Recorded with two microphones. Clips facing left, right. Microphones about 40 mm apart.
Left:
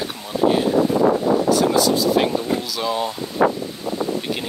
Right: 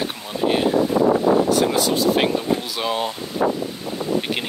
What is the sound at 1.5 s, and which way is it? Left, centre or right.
Speech, right.